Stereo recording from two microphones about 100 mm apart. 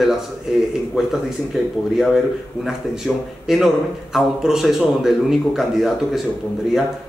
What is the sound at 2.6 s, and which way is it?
A man's voice, 5° right (ahead or behind).